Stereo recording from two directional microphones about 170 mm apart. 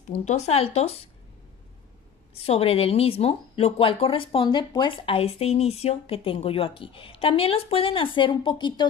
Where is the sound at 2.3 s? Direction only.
35° left (ahead or behind).